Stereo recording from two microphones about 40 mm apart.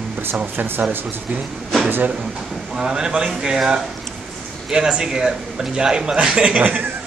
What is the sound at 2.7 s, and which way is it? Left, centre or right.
A man's voice, centre.